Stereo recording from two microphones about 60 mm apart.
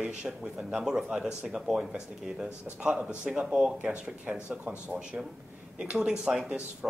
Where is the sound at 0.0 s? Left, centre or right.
Centre.